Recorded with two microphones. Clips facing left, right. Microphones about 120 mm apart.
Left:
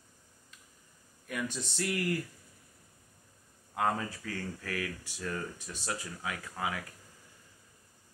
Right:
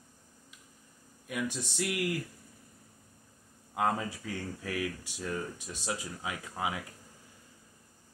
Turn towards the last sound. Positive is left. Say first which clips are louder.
# right 1 dB
turn(degrees=-20)  # may be behind; listen again after turning